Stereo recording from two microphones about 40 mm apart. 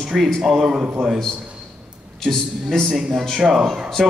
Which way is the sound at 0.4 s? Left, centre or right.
Centre.